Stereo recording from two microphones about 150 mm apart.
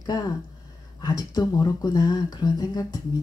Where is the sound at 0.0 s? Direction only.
25° left (ahead or behind).